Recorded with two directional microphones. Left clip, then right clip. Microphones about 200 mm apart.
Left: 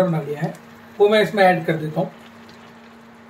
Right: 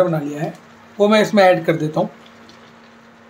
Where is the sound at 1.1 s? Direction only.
55° right (ahead or behind).